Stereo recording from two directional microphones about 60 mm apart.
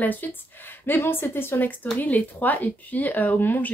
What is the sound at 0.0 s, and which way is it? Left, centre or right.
Speech, left.